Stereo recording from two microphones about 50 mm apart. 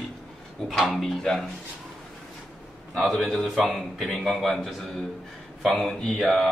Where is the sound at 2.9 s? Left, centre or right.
Centre.